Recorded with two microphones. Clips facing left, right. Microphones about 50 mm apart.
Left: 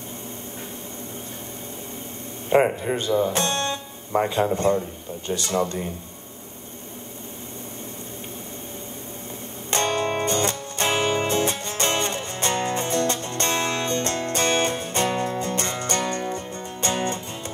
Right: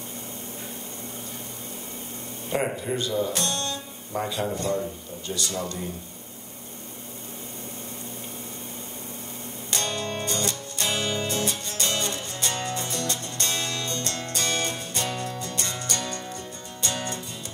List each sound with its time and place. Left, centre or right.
2.5 s speech: left
9.7 s music: left